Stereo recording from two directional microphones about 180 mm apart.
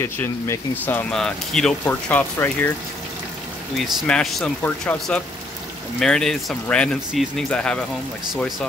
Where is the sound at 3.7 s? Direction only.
Centre (ahead or behind).